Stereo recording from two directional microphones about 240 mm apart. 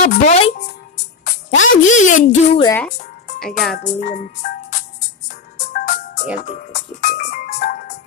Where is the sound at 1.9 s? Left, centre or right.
Left.